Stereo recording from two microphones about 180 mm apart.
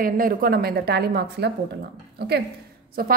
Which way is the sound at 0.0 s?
50° right (ahead or behind).